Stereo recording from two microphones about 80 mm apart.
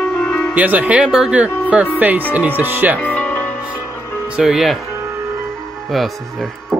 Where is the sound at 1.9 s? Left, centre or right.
Right.